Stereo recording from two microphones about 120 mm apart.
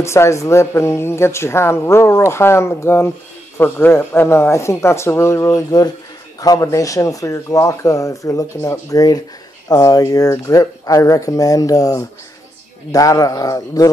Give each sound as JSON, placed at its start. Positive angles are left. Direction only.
{"t": 0.0, "sound": "a woman's voice", "side_deg": 25}